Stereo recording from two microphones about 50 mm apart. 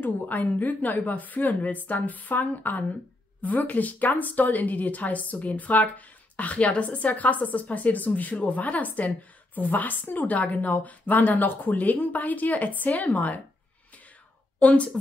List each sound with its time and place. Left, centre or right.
0.0 s a woman's voice: left
14.6 s speech: left